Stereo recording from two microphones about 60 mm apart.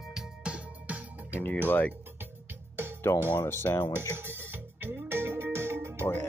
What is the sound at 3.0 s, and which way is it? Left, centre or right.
Speech, left.